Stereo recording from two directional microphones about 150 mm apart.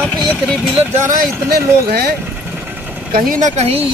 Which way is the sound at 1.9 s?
90° right.